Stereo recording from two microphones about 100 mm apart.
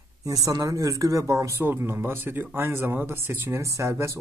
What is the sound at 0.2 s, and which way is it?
Speech, 40° right (ahead or behind).